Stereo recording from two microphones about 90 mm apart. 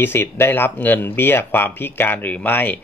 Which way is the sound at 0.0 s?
25° left (ahead or behind).